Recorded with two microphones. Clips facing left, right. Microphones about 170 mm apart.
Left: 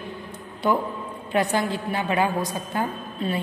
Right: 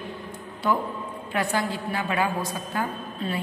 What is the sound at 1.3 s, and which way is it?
A woman's voice, 20° left (ahead or behind).